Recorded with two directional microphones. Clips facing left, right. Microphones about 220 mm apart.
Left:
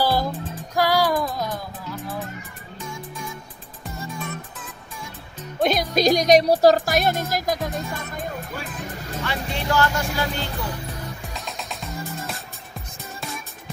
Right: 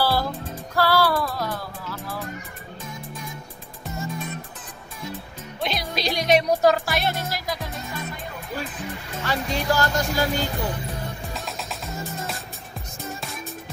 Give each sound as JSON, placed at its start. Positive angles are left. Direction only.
{"t": 0.0, "sound": "music", "side_deg": 15}
{"t": 5.6, "sound": "speech", "side_deg": 45}
{"t": 9.2, "sound": "speech", "side_deg": -40}
{"t": 11.3, "sound": "music", "side_deg": 0}